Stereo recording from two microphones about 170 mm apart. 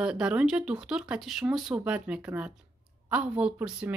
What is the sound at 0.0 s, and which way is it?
Speech, 5° right (ahead or behind).